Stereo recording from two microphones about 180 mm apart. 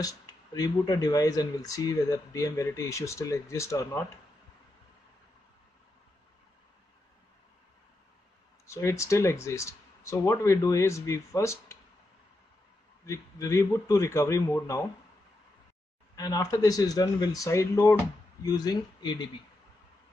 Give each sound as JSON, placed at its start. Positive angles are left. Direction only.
{"t": 0.0, "sound": "speech", "side_deg": 20}
{"t": 8.6, "sound": "speech", "side_deg": 15}
{"t": 13.0, "sound": "speech", "side_deg": 15}
{"t": 16.2, "sound": "speech", "side_deg": 20}